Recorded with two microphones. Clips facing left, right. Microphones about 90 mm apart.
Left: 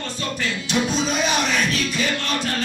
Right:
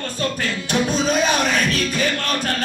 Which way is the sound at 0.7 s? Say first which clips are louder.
Right 3 dB; 45° right (ahead or behind).